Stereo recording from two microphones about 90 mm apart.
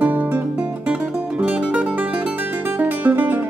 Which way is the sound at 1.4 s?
10° right (ahead or behind).